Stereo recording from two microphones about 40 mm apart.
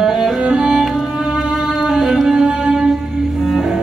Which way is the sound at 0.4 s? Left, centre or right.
Centre.